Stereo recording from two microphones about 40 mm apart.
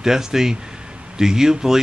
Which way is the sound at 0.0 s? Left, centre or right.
Centre.